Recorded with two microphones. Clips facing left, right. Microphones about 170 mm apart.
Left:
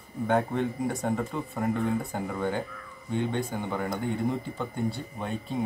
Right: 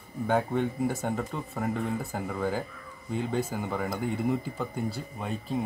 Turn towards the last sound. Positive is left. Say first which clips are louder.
# even
turn(degrees=0)  # may be behind; listen again after turning